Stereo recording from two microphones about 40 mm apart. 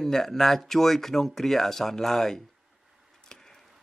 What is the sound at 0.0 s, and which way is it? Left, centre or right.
Speech, centre.